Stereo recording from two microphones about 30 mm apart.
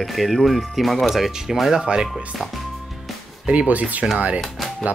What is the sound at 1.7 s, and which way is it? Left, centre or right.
Speech, right.